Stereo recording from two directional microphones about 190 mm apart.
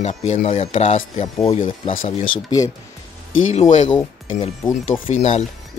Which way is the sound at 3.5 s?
40° left (ahead or behind).